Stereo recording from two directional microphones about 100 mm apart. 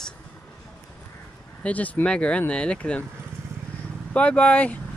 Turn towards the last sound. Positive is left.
turn(degrees=15)  # may be behind; listen again after turning